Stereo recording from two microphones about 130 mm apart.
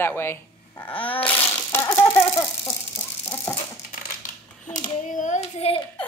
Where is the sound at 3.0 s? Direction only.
15° left (ahead or behind).